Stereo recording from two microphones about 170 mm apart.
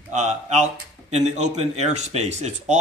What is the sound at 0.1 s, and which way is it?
Speech, 45° right (ahead or behind).